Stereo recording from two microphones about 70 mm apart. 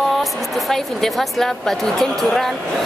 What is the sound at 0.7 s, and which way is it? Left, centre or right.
Speech, centre.